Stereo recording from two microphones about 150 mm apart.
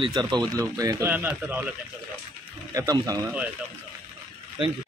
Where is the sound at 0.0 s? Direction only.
30° right (ahead or behind).